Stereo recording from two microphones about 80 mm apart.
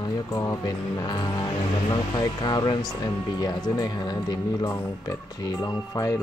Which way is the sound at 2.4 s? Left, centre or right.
Left.